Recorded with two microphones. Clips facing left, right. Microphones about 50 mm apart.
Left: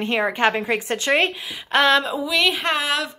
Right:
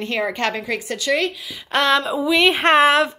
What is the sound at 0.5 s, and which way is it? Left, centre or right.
A woman's voice, left.